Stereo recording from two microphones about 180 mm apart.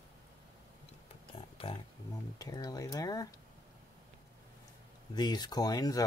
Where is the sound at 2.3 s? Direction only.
20° left (ahead or behind).